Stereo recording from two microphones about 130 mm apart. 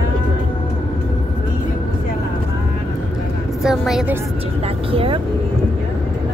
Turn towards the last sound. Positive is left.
turn(degrees=-45)  # may be behind; listen again after turning